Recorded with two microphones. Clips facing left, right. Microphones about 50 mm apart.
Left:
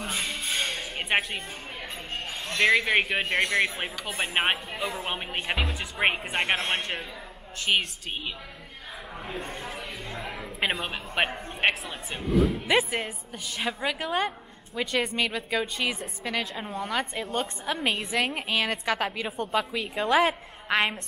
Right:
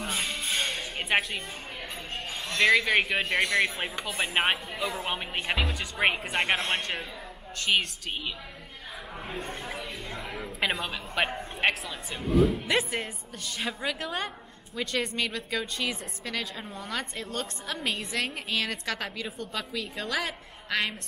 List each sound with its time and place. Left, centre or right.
0.0 s music: centre
2.1 s a man's voice: centre
7.7 s a woman's voice: centre
9.3 s a man's voice: centre
9.8 s music: centre
11.2 s a woman's voice: centre
12.3 s a man's voice: centre
20.1 s a woman's voice: left